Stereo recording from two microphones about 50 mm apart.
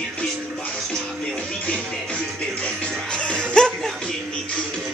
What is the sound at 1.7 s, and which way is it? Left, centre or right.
Music, left.